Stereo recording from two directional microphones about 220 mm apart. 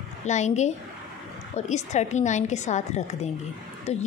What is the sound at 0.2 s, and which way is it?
A woman's voice, 30° left (ahead or behind).